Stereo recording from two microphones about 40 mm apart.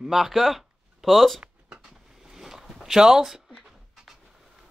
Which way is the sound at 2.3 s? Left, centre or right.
Centre.